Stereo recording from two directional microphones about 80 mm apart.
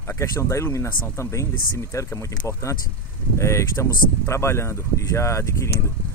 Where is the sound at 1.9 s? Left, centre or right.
Left.